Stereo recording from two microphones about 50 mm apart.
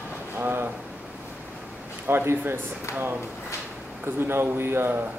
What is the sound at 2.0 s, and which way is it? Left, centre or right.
Speech, right.